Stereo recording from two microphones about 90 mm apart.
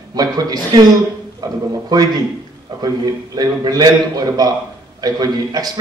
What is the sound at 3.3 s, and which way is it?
A man's voice, 45° right (ahead or behind).